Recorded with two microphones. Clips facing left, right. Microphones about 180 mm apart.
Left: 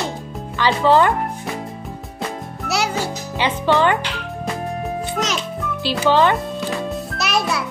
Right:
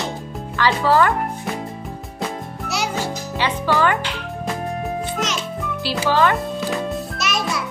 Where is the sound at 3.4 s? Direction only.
25° left (ahead or behind).